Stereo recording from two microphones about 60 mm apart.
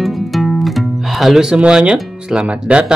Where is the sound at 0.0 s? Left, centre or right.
Centre.